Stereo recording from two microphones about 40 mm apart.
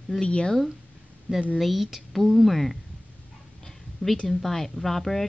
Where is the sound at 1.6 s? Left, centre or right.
Centre.